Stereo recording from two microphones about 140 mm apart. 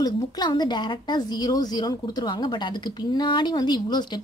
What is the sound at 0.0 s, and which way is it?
A woman's voice, 30° left (ahead or behind).